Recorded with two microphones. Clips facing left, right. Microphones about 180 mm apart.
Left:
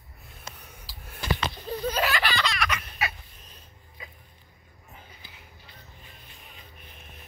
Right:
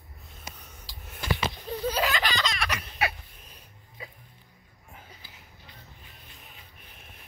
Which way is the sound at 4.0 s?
35° right (ahead or behind).